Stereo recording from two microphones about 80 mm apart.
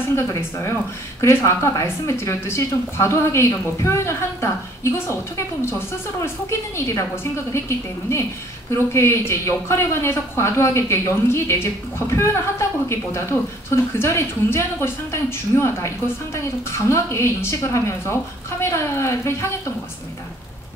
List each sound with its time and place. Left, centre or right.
0.4 s a woman's voice: left